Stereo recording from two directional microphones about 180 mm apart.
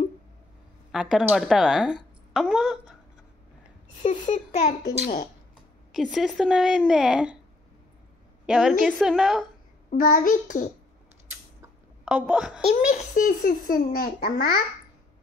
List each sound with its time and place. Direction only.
0.9 s speech: 5° right (ahead or behind)
4.0 s a child's voice: 40° left (ahead or behind)
5.9 s speech: centre (ahead or behind)
8.5 s speech: centre (ahead or behind)
9.8 s a child's voice: 50° left (ahead or behind)
12.0 s speech: 5° right (ahead or behind)
12.6 s a child's voice: 40° left (ahead or behind)